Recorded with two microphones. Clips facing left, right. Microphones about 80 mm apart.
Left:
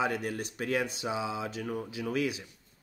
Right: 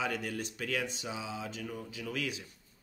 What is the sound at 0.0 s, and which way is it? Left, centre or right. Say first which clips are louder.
Speech: left 4 dB; left.